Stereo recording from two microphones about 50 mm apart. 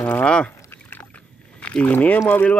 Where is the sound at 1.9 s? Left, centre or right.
Left.